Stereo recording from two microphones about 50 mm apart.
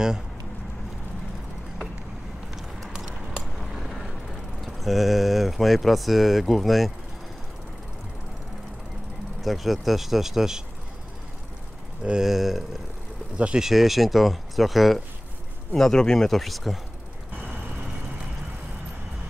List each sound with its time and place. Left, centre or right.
3.3 s a sound: centre
4.6 s speech: centre
9.4 s speech: centre
12.0 s speech: centre
12.3 s speech: centre
15.7 s speech: centre
16.3 s speech: centre